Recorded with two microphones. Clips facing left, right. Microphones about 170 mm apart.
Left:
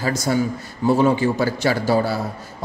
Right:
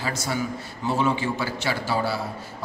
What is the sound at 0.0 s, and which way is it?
A man's voice, 40° left (ahead or behind).